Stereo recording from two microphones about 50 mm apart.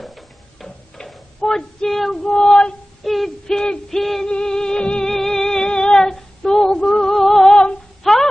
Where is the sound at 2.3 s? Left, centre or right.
Centre.